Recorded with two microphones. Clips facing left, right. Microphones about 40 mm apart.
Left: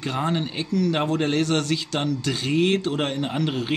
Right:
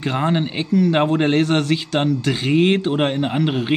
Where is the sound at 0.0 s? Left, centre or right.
Right.